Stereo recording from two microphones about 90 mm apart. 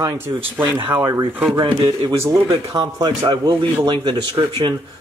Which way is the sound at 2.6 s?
40° right (ahead or behind).